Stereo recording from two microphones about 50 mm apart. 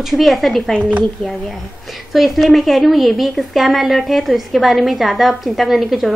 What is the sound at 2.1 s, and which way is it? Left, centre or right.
A woman's voice, centre.